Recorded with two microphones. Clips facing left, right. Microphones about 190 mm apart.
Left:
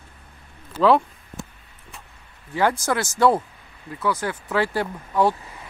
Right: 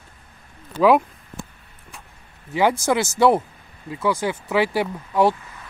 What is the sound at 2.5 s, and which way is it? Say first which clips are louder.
Speech: right 3 dB; 15° right (ahead or behind).